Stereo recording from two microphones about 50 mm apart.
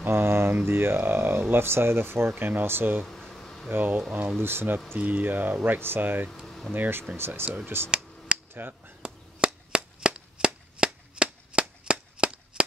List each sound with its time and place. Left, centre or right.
0.0 s a sound: right
0.7 s speech: right
2.3 s speech: right
2.6 s speech: right
3.0 s a sound: centre
3.7 s speech: right
4.9 s speech: right
6.4 s a sound: centre
7.2 s speech: right
8.5 s speech: right
9.0 s cap gun: right
11.8 s a sound: centre